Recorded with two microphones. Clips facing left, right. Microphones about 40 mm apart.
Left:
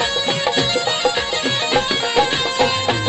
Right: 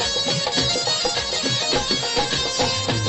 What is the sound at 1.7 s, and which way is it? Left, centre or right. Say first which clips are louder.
Music: left 8 dB; left.